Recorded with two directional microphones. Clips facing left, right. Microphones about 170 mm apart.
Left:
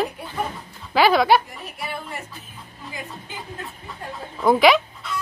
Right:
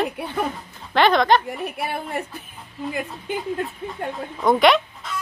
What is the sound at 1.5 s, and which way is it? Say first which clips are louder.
Speech: right 6 dB; 60° right (ahead or behind).